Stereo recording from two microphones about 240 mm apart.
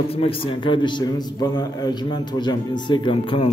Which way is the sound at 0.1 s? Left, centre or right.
Left.